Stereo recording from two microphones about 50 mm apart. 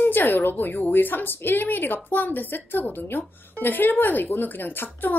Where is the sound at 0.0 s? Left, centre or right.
Left.